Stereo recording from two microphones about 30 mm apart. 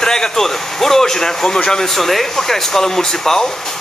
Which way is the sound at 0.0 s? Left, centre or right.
Left.